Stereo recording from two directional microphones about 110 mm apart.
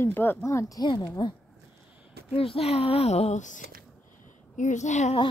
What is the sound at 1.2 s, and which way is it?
Speech, 45° left (ahead or behind).